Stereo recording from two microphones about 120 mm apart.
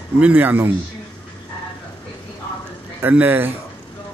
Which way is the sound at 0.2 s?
15° right (ahead or behind).